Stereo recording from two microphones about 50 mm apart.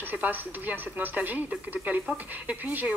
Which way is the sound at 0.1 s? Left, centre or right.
Right.